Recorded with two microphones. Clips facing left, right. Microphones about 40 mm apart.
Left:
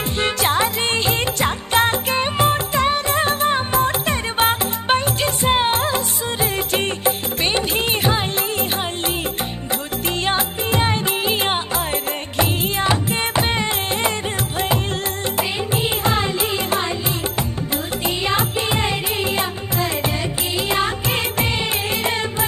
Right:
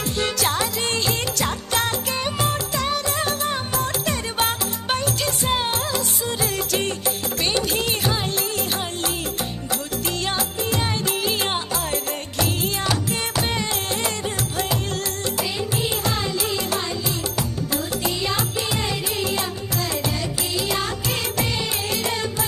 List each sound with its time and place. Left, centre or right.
0.2 s music: left
10.2 s music: left
15.3 s music: left
18.0 s music: left